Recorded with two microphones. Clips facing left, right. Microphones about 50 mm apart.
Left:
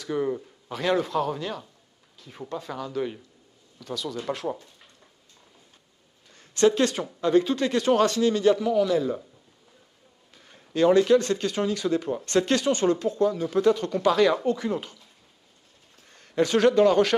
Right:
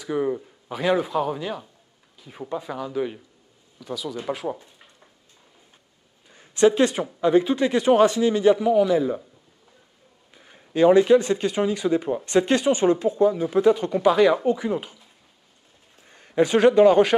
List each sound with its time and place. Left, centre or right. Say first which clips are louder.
0.0 s speech: right 2 dB; centre
6.3 s speech: right 3 dB; centre
10.3 s speech: right 3 dB; centre